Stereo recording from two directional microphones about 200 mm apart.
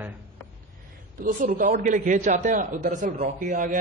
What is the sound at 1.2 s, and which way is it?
A man's voice, 45° right (ahead or behind).